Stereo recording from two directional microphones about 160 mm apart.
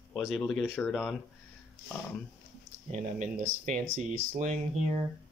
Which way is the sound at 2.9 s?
50° right (ahead or behind).